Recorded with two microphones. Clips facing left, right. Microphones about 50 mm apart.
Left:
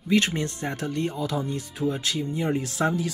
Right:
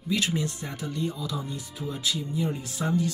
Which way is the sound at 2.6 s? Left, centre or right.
Left.